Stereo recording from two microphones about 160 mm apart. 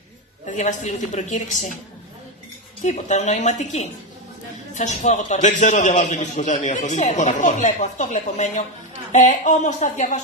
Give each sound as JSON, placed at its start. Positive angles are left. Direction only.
{"t": 0.5, "sound": "a man's voice", "side_deg": 50}
{"t": 2.8, "sound": "a man's voice", "side_deg": 45}